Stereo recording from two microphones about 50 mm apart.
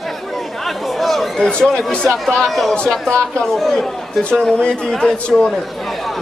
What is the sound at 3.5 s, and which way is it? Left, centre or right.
Speech, centre.